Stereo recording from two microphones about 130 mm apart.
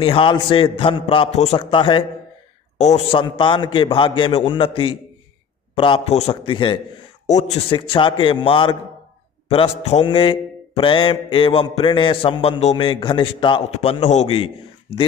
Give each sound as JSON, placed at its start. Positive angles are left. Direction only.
{"t": 0.0, "sound": "a man's voice", "side_deg": 40}
{"t": 1.3, "sound": "a man's voice", "side_deg": 55}
{"t": 1.6, "sound": "mantra", "side_deg": 40}
{"t": 3.1, "sound": "mantra", "side_deg": 40}
{"t": 5.9, "sound": "a man's voice", "side_deg": 55}
{"t": 7.2, "sound": "mantra", "side_deg": 60}
{"t": 9.5, "sound": "a man's voice", "side_deg": 55}
{"t": 10.0, "sound": "mantra", "side_deg": 40}
{"t": 14.0, "sound": "a man's voice", "side_deg": 55}